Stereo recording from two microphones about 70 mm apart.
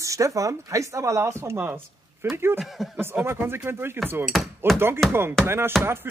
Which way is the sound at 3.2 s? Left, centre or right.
Right.